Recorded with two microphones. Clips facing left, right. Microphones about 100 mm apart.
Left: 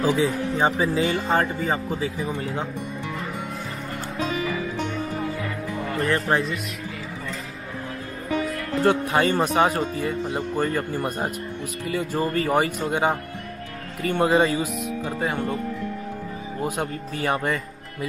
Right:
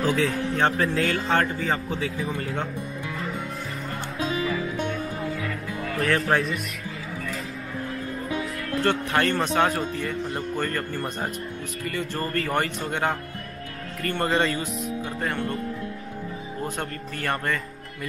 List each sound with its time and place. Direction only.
0.0 s speech: 5° left (ahead or behind)
5.7 s music: 25° left (ahead or behind)
5.9 s speech: centre (ahead or behind)
8.8 s speech: 5° left (ahead or behind)
16.6 s speech: 5° left (ahead or behind)